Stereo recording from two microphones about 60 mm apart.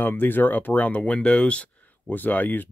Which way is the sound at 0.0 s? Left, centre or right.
Left.